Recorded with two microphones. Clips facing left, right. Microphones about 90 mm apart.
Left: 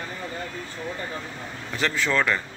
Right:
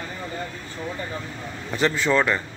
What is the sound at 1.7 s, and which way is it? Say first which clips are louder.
Speech: right 4 dB; 20° right (ahead or behind).